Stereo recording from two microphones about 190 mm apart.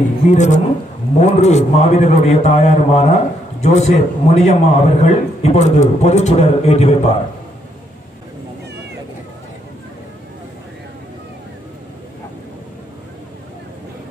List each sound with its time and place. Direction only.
0.3 s a man's voice: 40° left (ahead or behind)